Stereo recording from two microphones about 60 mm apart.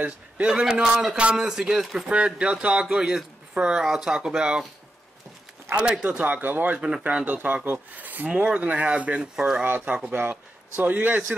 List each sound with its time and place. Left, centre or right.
0.0 s speech: centre
5.9 s speech: right
9.7 s speech: right